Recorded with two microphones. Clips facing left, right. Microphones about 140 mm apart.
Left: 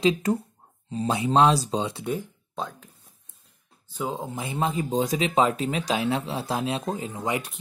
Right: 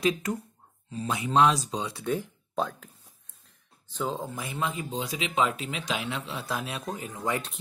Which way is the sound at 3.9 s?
10° left (ahead or behind).